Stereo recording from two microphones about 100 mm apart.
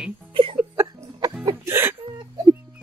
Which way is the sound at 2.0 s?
50° right (ahead or behind).